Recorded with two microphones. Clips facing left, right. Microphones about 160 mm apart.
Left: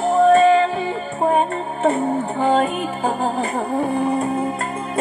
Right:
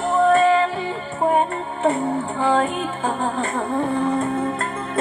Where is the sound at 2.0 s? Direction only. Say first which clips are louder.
Left 2 dB; 45° left (ahead or behind).